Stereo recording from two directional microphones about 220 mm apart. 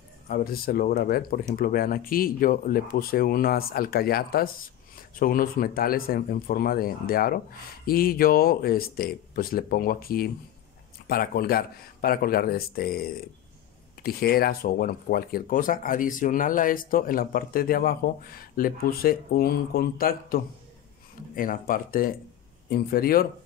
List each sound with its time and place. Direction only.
0.3 s speech: 40° left (ahead or behind)